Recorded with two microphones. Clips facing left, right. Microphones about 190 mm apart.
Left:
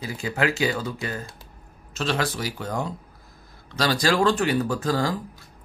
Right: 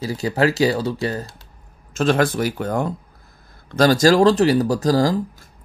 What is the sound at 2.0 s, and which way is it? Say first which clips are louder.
Speech: right 8 dB; 50° right (ahead or behind).